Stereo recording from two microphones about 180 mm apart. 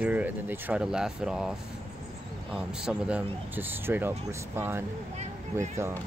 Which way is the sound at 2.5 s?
5° right (ahead or behind).